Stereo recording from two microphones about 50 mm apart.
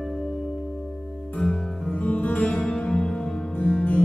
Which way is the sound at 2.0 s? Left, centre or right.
Left.